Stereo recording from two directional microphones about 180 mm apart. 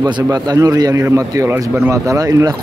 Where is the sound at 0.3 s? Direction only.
20° right (ahead or behind).